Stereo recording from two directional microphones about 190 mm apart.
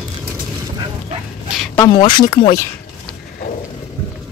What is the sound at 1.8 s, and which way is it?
Speech, 25° left (ahead or behind).